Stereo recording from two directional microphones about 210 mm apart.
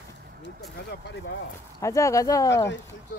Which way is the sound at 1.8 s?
15° left (ahead or behind).